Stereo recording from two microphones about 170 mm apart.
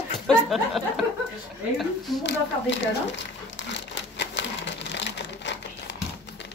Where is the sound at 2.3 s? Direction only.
90° left.